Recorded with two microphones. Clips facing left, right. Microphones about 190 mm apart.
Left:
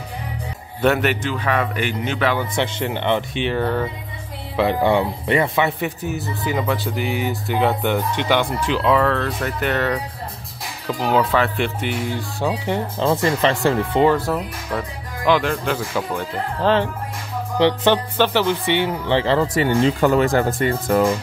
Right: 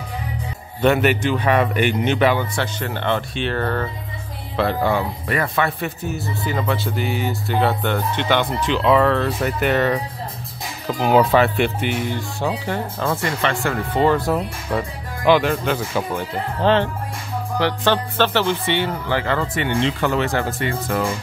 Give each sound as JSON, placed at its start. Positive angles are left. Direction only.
{"t": 0.7, "sound": "speech", "side_deg": 0}
{"t": 1.2, "sound": "a man's voice", "side_deg": -20}
{"t": 2.5, "sound": "speech", "side_deg": 20}
{"t": 8.8, "sound": "speech", "side_deg": -5}
{"t": 11.1, "sound": "speech", "side_deg": -20}
{"t": 12.6, "sound": "speech", "side_deg": 20}
{"t": 13.2, "sound": "speech", "side_deg": 30}
{"t": 13.9, "sound": "speech", "side_deg": 10}
{"t": 14.2, "sound": "a man's voice", "side_deg": -20}
{"t": 14.8, "sound": "speech", "side_deg": -5}
{"t": 17.6, "sound": "speech", "side_deg": 20}
{"t": 19.0, "sound": "speech", "side_deg": 30}